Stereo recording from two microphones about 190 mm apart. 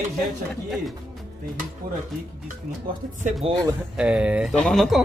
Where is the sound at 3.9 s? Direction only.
5° right (ahead or behind).